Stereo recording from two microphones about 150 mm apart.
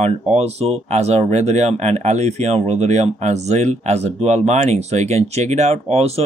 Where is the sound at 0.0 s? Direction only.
45° right (ahead or behind).